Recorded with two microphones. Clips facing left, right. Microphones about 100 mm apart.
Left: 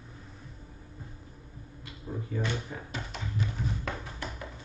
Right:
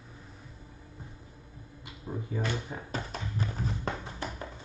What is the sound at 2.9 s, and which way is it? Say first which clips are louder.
Tap: right 1 dB; 40° right (ahead or behind).